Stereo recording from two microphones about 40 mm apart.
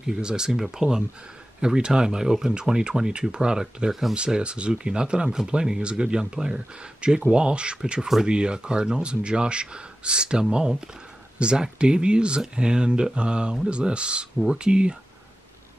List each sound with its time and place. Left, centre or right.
0.0 s speech: centre